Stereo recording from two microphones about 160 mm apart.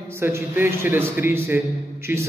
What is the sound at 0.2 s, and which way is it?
A man's voice, 15° right (ahead or behind).